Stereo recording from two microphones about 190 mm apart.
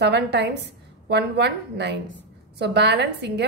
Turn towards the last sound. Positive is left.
turn(degrees=-65)  # may be behind; listen again after turning